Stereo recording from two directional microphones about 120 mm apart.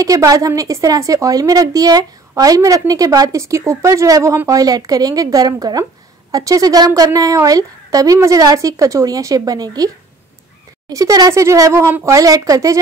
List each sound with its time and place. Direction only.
0.0 s a woman's voice: 30° right (ahead or behind)
10.9 s a woman's voice: 30° right (ahead or behind)